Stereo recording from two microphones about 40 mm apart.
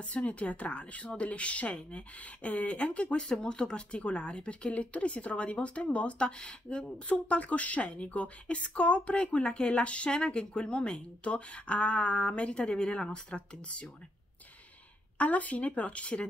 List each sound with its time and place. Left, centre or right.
0.0 s a woman's voice: left
3.2 s speech: left
7.1 s a woman's voice: left
15.1 s a woman's voice: left